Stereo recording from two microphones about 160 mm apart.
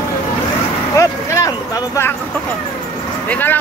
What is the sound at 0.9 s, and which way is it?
Vehicle, 20° left (ahead or behind).